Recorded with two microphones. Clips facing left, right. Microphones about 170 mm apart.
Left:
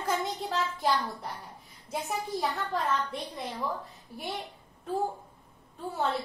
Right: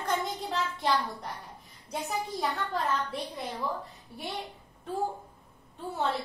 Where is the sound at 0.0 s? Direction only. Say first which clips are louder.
Even; centre (ahead or behind).